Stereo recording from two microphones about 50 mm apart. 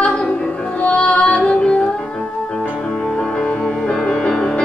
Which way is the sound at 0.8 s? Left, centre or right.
Left.